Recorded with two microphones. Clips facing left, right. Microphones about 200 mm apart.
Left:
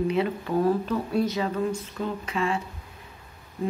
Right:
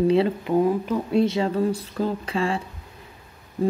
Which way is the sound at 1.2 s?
30° right (ahead or behind).